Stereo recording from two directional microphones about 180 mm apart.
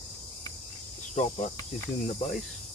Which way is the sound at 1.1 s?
40° left (ahead or behind).